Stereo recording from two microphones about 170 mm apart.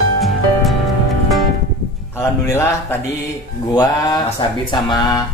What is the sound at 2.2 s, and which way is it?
Speech, 15° left (ahead or behind).